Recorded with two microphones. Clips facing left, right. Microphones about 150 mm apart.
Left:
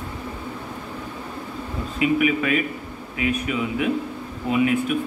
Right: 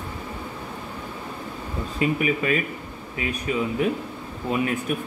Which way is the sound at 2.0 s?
35° right (ahead or behind).